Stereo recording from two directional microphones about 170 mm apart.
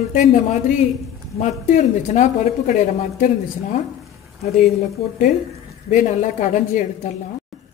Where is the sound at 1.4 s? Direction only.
45° left (ahead or behind).